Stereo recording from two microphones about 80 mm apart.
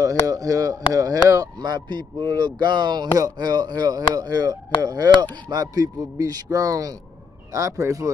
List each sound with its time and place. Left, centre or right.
0.0 s a man's voice: right